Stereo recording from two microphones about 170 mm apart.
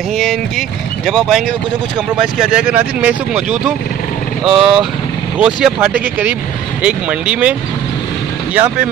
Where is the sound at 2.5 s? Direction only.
10° right (ahead or behind).